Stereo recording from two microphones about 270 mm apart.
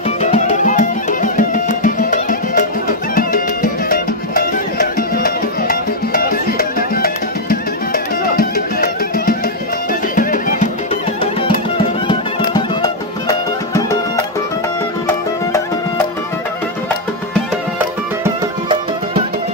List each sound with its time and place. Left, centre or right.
0.2 s music: left
12.1 s music: centre
17.7 s music: centre